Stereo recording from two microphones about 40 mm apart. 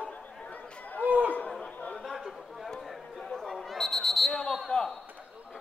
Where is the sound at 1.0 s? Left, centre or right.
Right.